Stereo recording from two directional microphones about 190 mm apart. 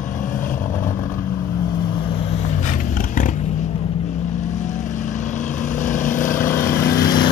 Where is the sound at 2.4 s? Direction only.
40° left (ahead or behind).